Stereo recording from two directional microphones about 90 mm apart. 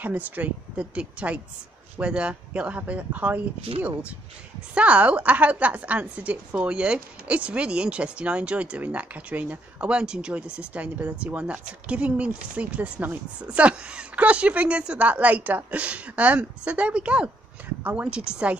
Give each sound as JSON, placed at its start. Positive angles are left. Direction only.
{"t": 0.0, "sound": "a woman's voice", "side_deg": -20}
{"t": 4.7, "sound": "a woman's voice", "side_deg": -15}